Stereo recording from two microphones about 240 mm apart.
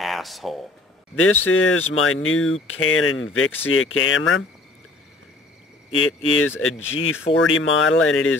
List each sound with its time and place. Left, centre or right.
0.0 s a sound: centre
1.2 s speech: left
5.9 s speech: left